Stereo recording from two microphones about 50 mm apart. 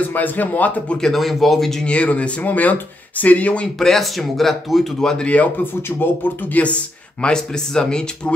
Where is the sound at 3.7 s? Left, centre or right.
Centre.